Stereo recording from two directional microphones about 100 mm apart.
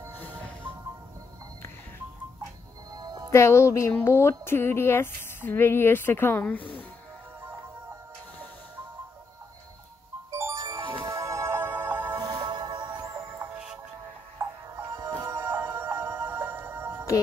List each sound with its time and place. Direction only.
2.9 s music: 40° right (ahead or behind)
3.3 s speech: 25° left (ahead or behind)
10.3 s music: 30° right (ahead or behind)
10.8 s music: 55° right (ahead or behind)
11.1 s music: 30° right (ahead or behind)
12.3 s music: 50° right (ahead or behind)
14.4 s music: 25° right (ahead or behind)